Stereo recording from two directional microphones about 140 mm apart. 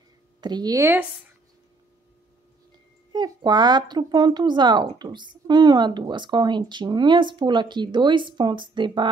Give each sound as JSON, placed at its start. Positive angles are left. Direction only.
{"t": 0.4, "sound": "speech", "side_deg": -30}
{"t": 3.1, "sound": "speech", "side_deg": -30}